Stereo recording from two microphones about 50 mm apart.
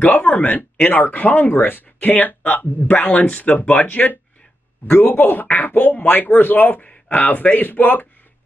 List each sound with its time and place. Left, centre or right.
0.0 s speech: left